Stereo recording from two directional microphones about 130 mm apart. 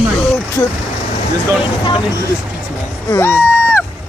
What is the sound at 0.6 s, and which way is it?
Speech, 30° left (ahead or behind).